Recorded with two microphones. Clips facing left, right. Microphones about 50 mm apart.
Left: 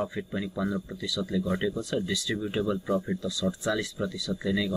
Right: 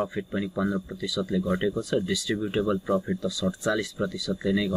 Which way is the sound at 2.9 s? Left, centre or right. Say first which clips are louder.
Right 2 dB; centre.